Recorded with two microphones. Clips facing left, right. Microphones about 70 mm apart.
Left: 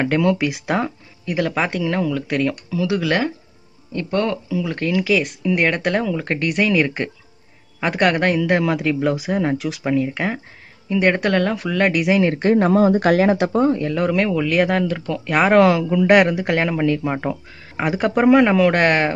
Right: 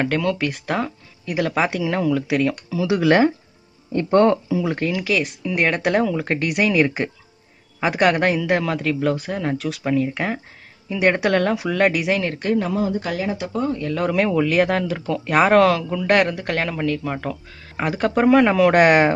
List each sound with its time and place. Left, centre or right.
0.0 s speech: centre
1.2 s speech: centre
2.8 s speech: right
4.7 s speech: centre
12.5 s speech: left
13.5 s speech: left
13.9 s speech: centre
17.7 s speech: centre